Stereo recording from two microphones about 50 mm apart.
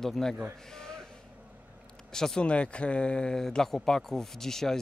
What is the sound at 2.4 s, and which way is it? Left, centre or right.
Speech, left.